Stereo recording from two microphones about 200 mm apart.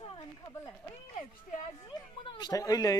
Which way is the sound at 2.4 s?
20° left (ahead or behind).